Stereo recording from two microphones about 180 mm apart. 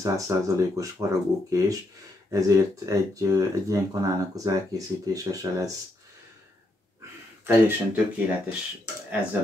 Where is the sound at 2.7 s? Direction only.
20° right (ahead or behind).